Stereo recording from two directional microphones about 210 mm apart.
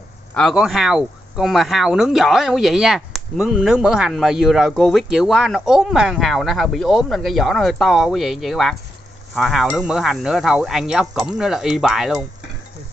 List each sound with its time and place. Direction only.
0.3 s speech: centre (ahead or behind)